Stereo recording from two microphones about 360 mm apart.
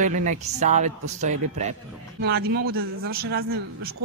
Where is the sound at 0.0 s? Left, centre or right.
Right.